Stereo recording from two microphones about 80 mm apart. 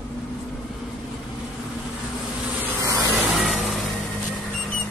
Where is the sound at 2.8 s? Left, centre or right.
Right.